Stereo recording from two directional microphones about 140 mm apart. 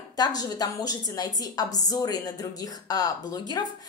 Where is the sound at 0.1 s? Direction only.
30° left (ahead or behind).